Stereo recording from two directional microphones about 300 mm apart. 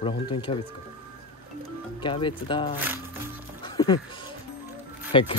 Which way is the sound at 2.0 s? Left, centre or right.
Centre.